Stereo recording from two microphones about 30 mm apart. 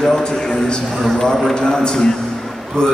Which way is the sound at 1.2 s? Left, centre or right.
Centre.